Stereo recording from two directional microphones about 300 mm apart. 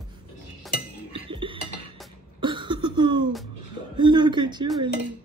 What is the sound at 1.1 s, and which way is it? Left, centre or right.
Chink, centre.